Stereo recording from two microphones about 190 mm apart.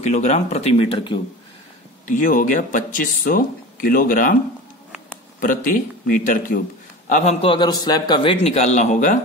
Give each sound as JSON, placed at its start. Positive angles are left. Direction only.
{"t": 0.0, "sound": "a man's voice", "side_deg": 40}
{"t": 2.0, "sound": "speech", "side_deg": 45}
{"t": 5.4, "sound": "a man's voice", "side_deg": 45}
{"t": 7.4, "sound": "a man's voice", "side_deg": 25}